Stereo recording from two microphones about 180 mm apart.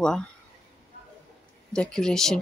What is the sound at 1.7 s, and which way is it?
Speech, 5° left (ahead or behind).